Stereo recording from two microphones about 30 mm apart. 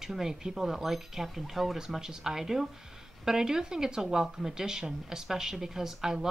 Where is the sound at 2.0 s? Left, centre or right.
Centre.